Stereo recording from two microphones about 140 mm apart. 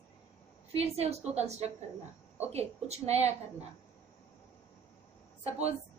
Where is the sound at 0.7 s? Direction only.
50° right (ahead or behind).